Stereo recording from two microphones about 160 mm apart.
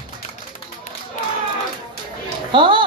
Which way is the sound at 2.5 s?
30° right (ahead or behind).